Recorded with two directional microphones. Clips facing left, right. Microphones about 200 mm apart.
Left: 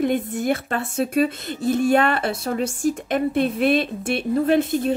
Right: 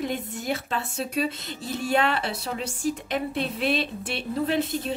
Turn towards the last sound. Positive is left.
turn(degrees=50)  # may be behind; listen again after turning